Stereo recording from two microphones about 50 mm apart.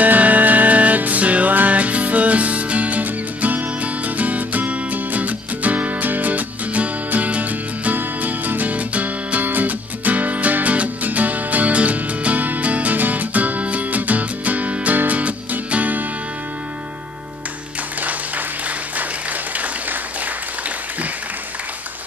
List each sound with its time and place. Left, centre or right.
0.0 s music: right
19.5 s applause: right